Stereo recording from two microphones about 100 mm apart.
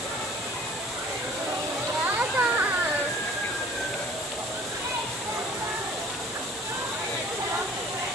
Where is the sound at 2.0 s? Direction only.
15° right (ahead or behind).